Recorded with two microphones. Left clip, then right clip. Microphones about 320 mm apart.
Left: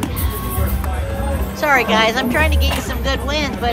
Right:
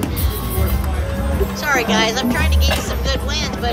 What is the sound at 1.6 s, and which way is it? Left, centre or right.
Speech, left.